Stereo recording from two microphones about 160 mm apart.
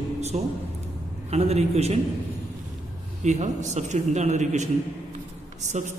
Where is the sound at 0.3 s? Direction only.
40° right (ahead or behind).